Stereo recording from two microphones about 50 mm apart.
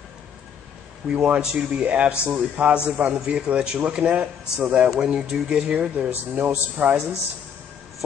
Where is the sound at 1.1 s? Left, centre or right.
Right.